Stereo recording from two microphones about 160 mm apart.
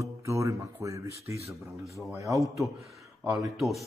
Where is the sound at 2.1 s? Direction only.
20° right (ahead or behind).